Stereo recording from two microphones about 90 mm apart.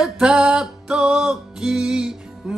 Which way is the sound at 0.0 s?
10° right (ahead or behind).